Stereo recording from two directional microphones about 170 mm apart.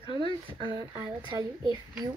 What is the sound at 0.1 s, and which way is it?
Speech, 30° left (ahead or behind).